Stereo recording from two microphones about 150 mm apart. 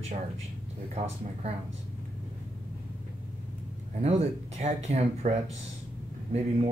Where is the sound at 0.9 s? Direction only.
45° right (ahead or behind).